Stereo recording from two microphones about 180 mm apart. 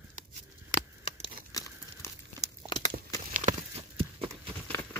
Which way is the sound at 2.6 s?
25° left (ahead or behind).